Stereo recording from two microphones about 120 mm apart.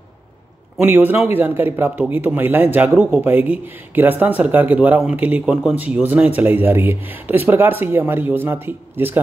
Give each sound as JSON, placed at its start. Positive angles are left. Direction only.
{"t": 0.7, "sound": "speech", "side_deg": -15}